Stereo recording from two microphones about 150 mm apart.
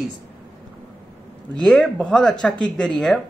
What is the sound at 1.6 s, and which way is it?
A man's voice, 5° left (ahead or behind).